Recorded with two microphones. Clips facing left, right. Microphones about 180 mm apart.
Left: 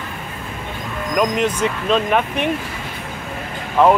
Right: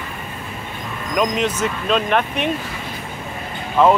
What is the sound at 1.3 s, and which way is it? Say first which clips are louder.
Speech: left 2 dB; 10° left (ahead or behind).